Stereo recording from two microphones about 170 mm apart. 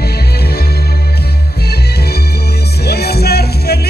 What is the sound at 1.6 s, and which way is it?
Music, 70° left (ahead or behind).